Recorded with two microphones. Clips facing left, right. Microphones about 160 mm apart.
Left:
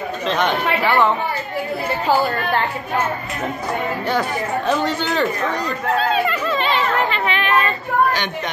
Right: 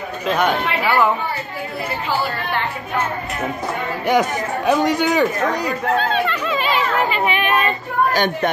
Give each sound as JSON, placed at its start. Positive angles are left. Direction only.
{"t": 0.3, "sound": "speech", "side_deg": -10}
{"t": 4.1, "sound": "speech", "side_deg": -15}
{"t": 5.9, "sound": "speech", "side_deg": 5}
{"t": 6.6, "sound": "chatter", "side_deg": -10}
{"t": 8.1, "sound": "speech", "side_deg": -45}